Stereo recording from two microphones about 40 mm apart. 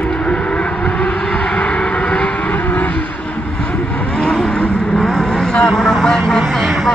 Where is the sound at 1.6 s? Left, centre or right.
Centre.